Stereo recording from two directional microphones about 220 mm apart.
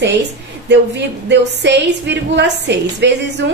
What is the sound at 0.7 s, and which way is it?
Speech, 50° right (ahead or behind).